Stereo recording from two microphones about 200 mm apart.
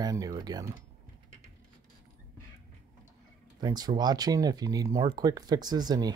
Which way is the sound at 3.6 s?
20° right (ahead or behind).